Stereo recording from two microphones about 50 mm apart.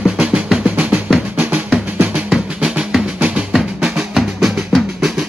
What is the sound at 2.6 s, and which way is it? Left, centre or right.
Music, centre.